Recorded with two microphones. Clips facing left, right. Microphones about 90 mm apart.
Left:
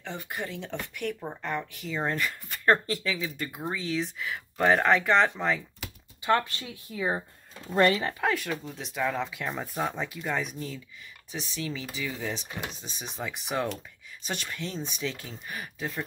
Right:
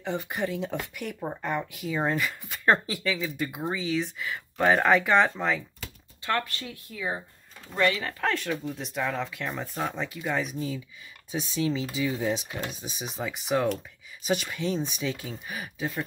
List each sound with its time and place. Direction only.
0.0 s speech: 20° right (ahead or behind)
0.5 s speech: 5° right (ahead or behind)
5.8 s speech: 20° left (ahead or behind); by 8.1 s 35° left (ahead or behind)
8.1 s speech: 10° left (ahead or behind)
11.3 s speech: 20° right (ahead or behind); by 16.0 s 5° right (ahead or behind)